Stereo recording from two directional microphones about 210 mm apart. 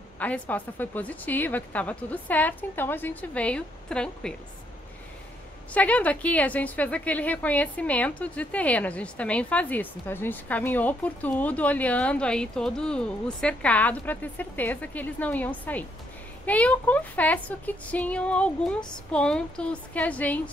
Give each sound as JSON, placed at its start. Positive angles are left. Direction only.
{"t": 0.2, "sound": "a woman's voice", "side_deg": 5}
{"t": 5.7, "sound": "a woman's voice", "side_deg": 5}